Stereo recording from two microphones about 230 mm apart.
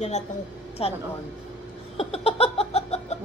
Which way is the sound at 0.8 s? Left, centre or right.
Left.